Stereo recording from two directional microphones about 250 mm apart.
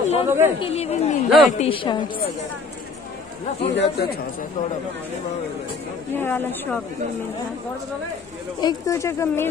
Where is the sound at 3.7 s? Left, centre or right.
Left.